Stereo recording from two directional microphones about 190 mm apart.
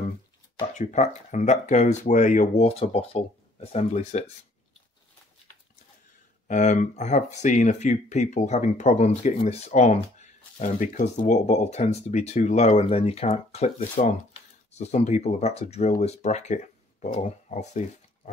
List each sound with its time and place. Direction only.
0.6 s speech: 40° left (ahead or behind)
6.4 s speech: 40° left (ahead or behind)